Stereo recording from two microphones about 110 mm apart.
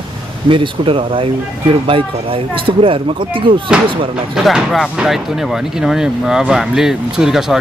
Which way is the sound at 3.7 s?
5° right (ahead or behind).